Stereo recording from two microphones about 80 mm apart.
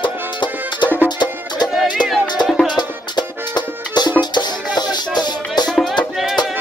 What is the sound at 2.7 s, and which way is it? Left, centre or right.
Music, left.